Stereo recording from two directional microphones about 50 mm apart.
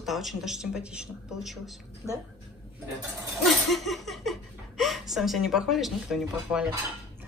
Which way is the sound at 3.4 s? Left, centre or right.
Centre.